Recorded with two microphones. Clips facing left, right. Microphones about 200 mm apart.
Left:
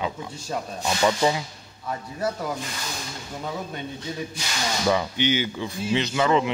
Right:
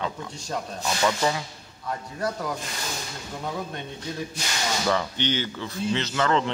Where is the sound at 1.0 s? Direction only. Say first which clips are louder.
Left 3 dB; 15° left (ahead or behind).